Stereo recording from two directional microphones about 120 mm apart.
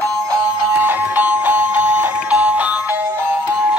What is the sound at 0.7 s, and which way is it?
Music, 15° right (ahead or behind).